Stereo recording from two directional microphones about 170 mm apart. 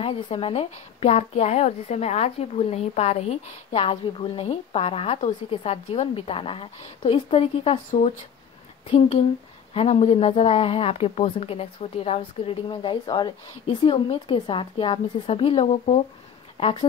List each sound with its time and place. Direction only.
0.0 s a woman's voice: 35° left (ahead or behind)